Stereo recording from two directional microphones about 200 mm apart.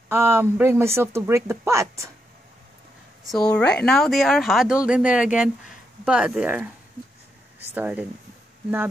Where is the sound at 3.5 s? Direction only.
5° left (ahead or behind).